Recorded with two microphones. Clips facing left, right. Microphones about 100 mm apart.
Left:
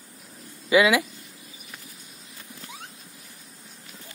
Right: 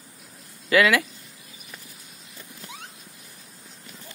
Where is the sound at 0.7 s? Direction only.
15° left (ahead or behind).